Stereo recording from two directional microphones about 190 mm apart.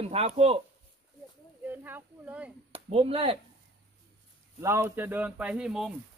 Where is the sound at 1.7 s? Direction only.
10° right (ahead or behind).